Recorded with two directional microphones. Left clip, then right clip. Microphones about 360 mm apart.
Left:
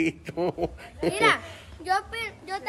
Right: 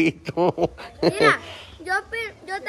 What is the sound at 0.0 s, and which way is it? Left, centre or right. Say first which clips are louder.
Speech: right 6 dB; right.